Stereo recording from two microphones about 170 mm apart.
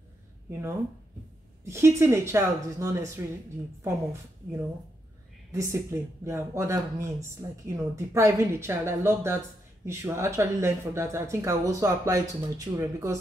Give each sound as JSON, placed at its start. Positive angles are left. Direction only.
{"t": 1.6, "sound": "a woman's voice", "side_deg": -15}